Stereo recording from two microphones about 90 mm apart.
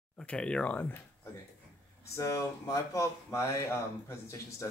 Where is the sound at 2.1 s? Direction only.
35° left (ahead or behind).